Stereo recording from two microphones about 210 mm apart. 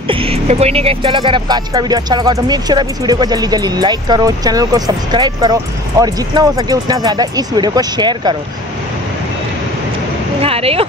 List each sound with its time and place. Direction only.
0.1 s speech: 25° right (ahead or behind)
10.4 s speech: 30° right (ahead or behind)